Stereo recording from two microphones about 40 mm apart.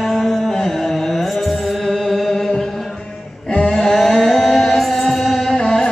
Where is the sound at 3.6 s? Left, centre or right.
Centre.